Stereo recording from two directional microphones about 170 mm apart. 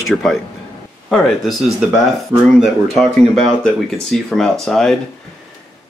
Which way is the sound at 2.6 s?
Centre (ahead or behind).